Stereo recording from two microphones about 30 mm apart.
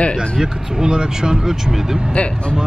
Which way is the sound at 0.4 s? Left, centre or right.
Right.